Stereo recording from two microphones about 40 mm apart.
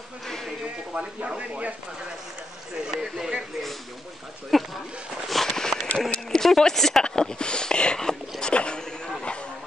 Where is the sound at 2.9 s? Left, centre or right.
Centre.